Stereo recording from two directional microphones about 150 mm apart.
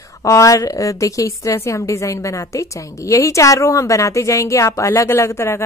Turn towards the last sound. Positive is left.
turn(degrees=20)  # may be behind; listen again after turning